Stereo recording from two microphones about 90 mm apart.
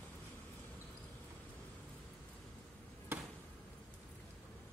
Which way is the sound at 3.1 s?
25° right (ahead or behind).